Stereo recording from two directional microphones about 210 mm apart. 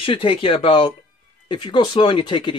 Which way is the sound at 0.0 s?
25° left (ahead or behind).